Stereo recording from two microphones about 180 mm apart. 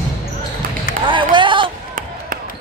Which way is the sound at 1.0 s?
25° right (ahead or behind).